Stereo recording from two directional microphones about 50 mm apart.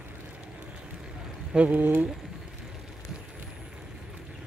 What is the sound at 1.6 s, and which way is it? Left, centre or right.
Speech, right.